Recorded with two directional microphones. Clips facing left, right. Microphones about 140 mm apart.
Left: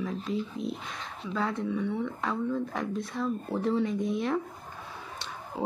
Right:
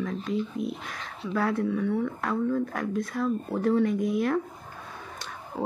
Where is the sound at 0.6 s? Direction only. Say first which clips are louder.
Right 2 dB; 50° right (ahead or behind).